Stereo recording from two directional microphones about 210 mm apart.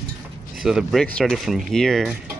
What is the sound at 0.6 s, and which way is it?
Speech, centre (ahead or behind).